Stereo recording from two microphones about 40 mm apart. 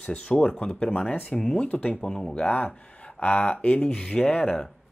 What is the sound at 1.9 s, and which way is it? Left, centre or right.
Speech, centre.